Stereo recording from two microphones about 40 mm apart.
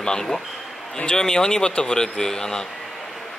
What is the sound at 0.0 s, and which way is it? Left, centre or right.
Speech, centre.